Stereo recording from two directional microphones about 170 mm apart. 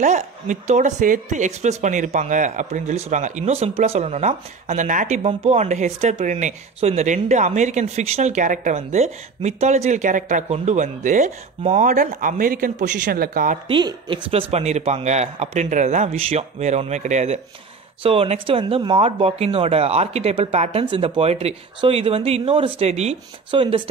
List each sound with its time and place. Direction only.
0.0 s a woman's voice: 45° right (ahead or behind)
13.7 s speech: 30° right (ahead or behind)
14.5 s speech: 40° right (ahead or behind)